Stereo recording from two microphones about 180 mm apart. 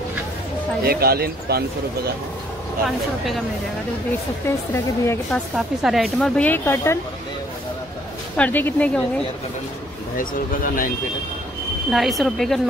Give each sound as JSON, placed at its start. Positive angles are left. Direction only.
{"t": 0.8, "sound": "speech", "side_deg": -60}
{"t": 4.7, "sound": "speech", "side_deg": 15}
{"t": 5.6, "sound": "speech", "side_deg": 0}
{"t": 8.4, "sound": "speech", "side_deg": 10}
{"t": 10.1, "sound": "speech", "side_deg": 50}
{"t": 11.9, "sound": "speech", "side_deg": 0}